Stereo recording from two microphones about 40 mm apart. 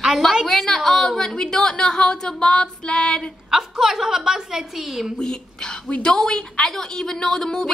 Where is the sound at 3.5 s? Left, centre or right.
Centre.